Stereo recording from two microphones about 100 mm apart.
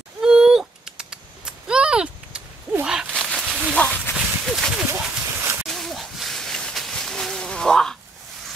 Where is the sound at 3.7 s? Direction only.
10° left (ahead or behind).